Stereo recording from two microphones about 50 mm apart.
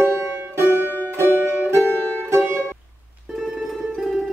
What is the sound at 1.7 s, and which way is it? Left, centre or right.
Music, right.